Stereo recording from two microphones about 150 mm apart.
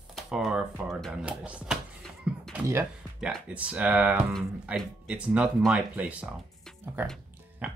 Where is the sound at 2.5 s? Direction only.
15° right (ahead or behind).